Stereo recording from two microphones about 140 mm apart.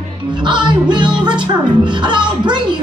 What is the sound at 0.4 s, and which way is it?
Speech, 35° right (ahead or behind).